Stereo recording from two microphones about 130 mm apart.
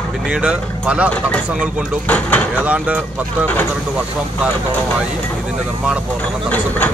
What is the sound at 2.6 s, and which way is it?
Speech, 10° right (ahead or behind).